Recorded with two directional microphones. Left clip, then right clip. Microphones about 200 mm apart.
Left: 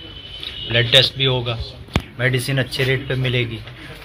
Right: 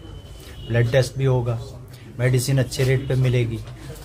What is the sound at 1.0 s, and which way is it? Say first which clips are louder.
Speech: left 5 dB; 15° right (ahead or behind).